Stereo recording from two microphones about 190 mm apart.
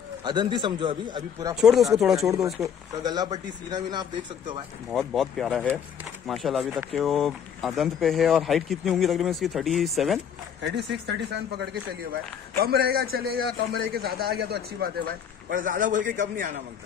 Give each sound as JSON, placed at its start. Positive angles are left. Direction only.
{"t": 0.2, "sound": "speech", "side_deg": -25}
{"t": 1.6, "sound": "speech", "side_deg": 0}
{"t": 2.6, "sound": "speech", "side_deg": -20}
{"t": 4.9, "sound": "speech", "side_deg": 0}
{"t": 10.6, "sound": "a man's voice", "side_deg": -65}